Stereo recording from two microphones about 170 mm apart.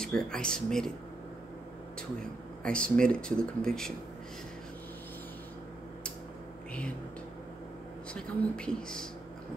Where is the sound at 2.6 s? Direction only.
5° left (ahead or behind).